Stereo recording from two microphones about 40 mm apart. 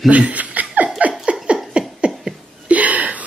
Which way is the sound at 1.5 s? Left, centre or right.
Right.